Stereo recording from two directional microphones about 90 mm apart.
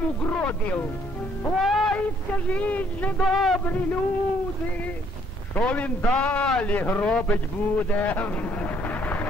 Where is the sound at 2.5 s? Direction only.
15° left (ahead or behind).